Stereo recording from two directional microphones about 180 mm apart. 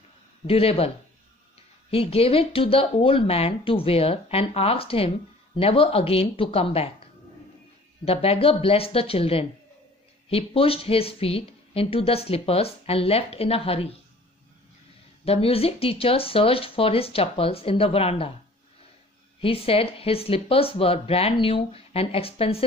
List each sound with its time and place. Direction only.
0.5 s a woman's voice: 30° left (ahead or behind)
15.2 s a woman's voice: 35° left (ahead or behind)
19.4 s a woman's voice: 30° left (ahead or behind)